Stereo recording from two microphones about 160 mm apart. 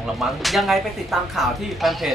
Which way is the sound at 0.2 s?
Centre (ahead or behind).